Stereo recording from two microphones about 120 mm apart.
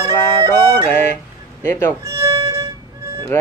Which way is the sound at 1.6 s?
20° left (ahead or behind).